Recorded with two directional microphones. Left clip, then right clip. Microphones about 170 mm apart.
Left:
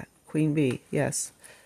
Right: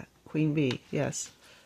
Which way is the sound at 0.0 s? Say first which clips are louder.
Left 3 dB; 15° left (ahead or behind).